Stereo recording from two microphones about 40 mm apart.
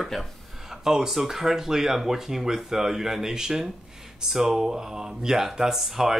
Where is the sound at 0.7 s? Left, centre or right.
Centre.